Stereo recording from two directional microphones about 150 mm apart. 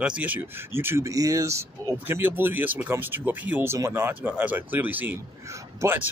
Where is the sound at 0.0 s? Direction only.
10° right (ahead or behind).